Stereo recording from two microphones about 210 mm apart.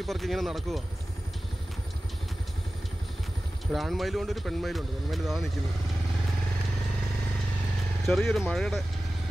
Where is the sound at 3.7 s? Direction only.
Centre (ahead or behind).